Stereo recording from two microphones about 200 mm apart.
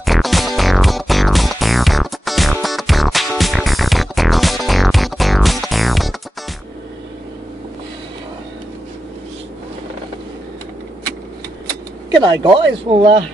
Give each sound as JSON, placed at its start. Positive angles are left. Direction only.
{"t": 0.0, "sound": "music", "side_deg": 0}
{"t": 12.2, "sound": "speech", "side_deg": -25}